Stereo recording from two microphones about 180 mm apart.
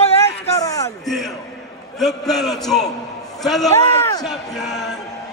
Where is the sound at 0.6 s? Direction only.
20° left (ahead or behind).